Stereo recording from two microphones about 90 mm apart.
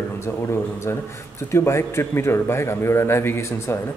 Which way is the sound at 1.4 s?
30° left (ahead or behind).